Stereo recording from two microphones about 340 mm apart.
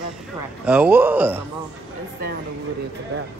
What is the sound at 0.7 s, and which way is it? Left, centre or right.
Speech, centre.